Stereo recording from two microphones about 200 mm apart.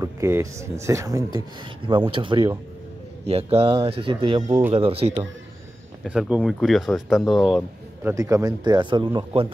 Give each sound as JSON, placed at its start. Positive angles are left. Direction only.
{"t": 0.0, "sound": "speech", "side_deg": -15}
{"t": 4.7, "sound": "speech", "side_deg": -30}
{"t": 6.0, "sound": "speech", "side_deg": -5}
{"t": 8.1, "sound": "speech", "side_deg": -15}